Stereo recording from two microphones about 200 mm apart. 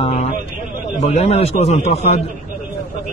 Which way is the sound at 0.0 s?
30° left (ahead or behind).